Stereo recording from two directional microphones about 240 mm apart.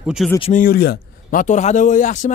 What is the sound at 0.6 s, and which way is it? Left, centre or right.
Speech, left.